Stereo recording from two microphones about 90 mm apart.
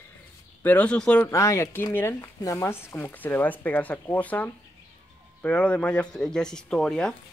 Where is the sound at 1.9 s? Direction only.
25° left (ahead or behind); by 7.1 s 5° left (ahead or behind).